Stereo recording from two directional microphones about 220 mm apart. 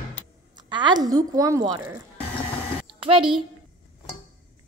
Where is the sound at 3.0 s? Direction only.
25° right (ahead or behind).